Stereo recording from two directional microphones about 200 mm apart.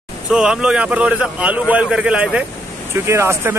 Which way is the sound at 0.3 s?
5° right (ahead or behind).